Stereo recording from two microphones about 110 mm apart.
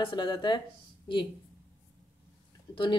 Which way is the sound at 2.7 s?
45° left (ahead or behind).